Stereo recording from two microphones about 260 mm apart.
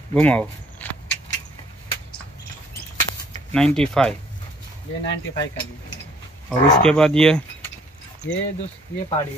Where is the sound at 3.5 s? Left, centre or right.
Centre.